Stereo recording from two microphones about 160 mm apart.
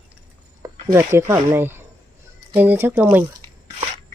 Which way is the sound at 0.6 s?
20° right (ahead or behind).